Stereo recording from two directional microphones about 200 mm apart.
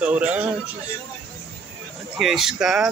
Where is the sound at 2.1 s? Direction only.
Centre (ahead or behind).